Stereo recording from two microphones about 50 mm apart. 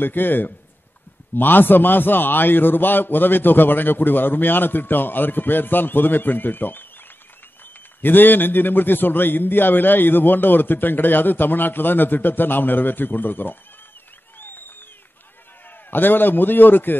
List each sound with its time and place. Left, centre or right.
0.0 s a man's voice: left
8.0 s a man's voice: left
15.9 s a man's voice: left